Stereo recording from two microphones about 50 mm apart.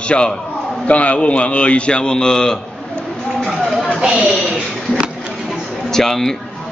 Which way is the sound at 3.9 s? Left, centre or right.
Centre.